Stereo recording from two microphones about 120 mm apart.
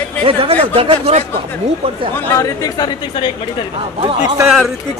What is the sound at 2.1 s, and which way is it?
Speech, 20° left (ahead or behind).